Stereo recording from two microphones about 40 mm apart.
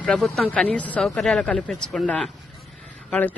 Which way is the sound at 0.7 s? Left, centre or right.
Left.